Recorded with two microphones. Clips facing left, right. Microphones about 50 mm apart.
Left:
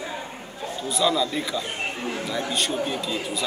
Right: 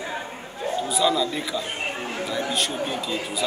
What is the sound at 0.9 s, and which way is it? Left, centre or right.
Speech, centre.